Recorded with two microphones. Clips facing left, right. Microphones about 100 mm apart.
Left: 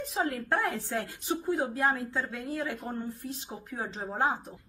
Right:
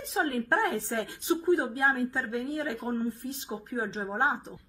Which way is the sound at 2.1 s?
20° right (ahead or behind).